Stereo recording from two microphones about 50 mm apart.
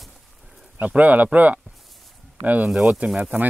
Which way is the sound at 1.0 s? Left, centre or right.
Right.